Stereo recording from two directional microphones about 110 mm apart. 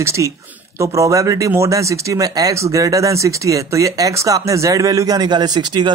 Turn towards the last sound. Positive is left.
turn(degrees=-45)  # may be behind; listen again after turning